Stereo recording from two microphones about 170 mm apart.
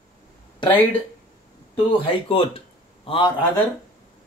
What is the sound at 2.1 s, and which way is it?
Speech, 35° left (ahead or behind).